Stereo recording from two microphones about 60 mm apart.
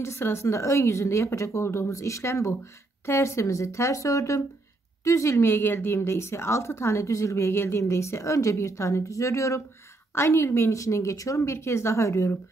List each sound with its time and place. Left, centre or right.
0.0 s a woman's voice: left
10.1 s a woman's voice: left